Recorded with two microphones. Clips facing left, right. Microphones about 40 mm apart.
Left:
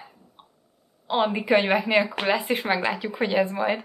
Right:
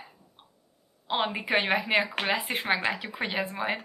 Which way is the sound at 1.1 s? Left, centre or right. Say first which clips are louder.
Left 6 dB; centre.